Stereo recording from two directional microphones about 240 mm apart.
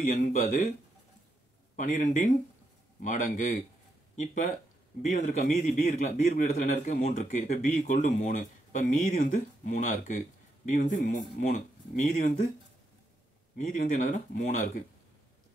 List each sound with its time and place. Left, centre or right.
0.0 s a man's voice: left
1.8 s a man's voice: left
5.1 s a man's voice: left
13.7 s a man's voice: left